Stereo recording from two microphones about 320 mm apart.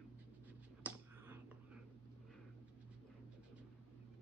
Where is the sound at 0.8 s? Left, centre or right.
Centre.